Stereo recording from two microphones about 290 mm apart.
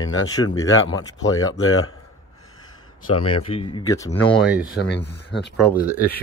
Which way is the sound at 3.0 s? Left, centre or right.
Left.